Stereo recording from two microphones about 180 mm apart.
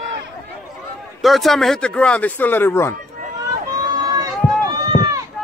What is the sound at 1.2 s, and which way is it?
Speech, centre (ahead or behind).